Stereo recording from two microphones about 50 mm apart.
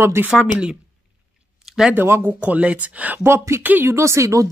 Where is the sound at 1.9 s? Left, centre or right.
Right.